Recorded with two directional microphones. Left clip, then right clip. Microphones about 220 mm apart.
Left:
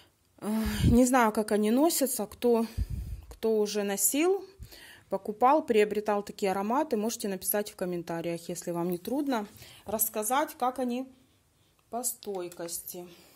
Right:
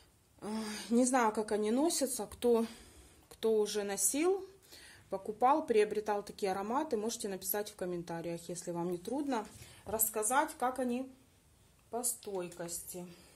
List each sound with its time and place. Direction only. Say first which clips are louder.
0.4 s speech: left 8 dB; 35° left (ahead or behind)